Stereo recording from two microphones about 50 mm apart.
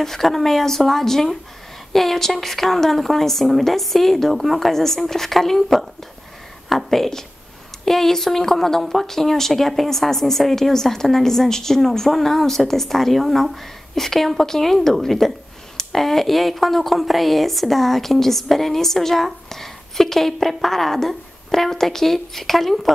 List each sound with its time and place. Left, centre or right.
0.0 s speech: centre